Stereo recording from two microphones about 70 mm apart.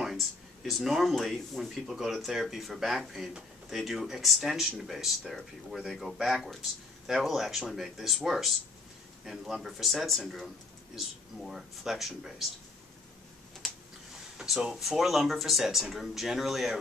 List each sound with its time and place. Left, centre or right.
0.0 s speech: centre
14.4 s speech: centre